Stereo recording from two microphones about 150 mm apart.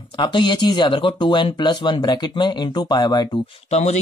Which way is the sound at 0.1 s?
30° left (ahead or behind).